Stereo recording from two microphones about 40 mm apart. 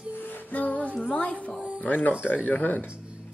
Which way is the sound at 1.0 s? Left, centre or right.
Left.